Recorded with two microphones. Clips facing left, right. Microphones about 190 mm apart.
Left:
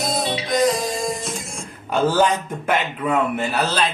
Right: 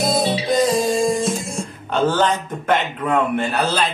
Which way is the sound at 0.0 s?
30° right (ahead or behind).